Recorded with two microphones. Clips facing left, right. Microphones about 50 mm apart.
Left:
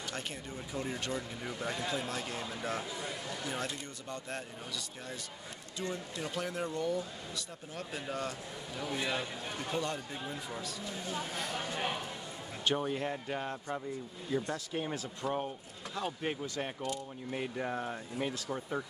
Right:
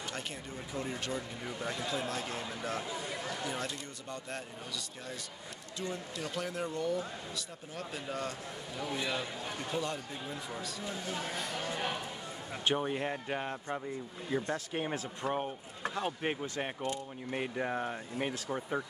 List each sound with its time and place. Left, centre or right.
0.7 s a man's voice: centre
6.1 s a man's voice: centre
8.9 s a man's voice: centre
9.8 s a man's voice: centre
12.6 s speech: right